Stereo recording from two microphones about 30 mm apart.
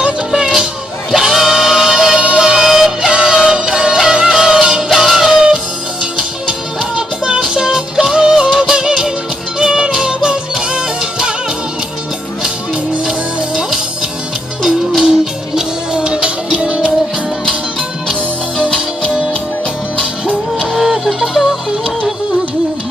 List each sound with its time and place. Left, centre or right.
1.1 s music: centre
1.6 s music: centre
4.9 s music: centre
5.3 s music: right
7.0 s music: right
15.0 s music: right
20.7 s music: centre